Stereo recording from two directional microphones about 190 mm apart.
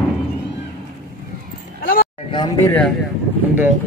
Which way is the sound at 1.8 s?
50° left (ahead or behind).